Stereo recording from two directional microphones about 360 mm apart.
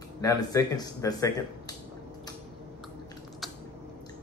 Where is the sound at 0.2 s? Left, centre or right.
Centre.